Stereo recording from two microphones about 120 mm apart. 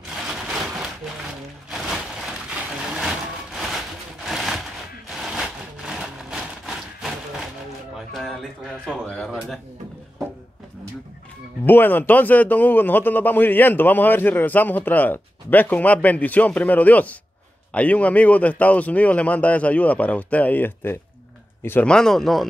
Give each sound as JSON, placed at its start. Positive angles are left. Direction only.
{"t": 2.5, "sound": "a sound", "side_deg": -5}
{"t": 9.0, "sound": "speech", "side_deg": 5}
{"t": 11.6, "sound": "a man's voice", "side_deg": 15}